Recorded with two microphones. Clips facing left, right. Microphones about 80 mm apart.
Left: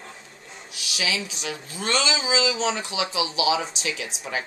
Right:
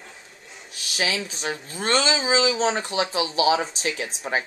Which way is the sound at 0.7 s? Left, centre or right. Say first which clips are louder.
Right 2 dB; right.